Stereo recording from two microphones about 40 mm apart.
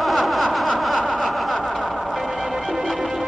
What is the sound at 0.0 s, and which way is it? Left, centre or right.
Snicker, centre.